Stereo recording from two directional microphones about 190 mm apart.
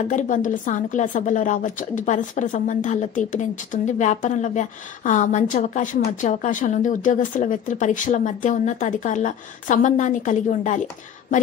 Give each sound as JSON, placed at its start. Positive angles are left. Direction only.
{"t": 0.1, "sound": "a woman's voice", "side_deg": 40}